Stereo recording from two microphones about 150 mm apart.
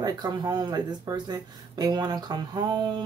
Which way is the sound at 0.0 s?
25° right (ahead or behind).